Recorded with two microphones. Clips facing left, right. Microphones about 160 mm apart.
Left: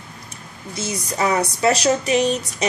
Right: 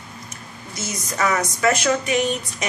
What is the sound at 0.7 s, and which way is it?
Speech, 30° left (ahead or behind).